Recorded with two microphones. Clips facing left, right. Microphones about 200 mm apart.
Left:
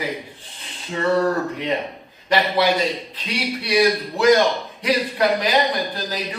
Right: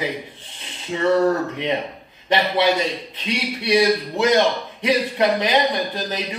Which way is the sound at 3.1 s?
25° right (ahead or behind).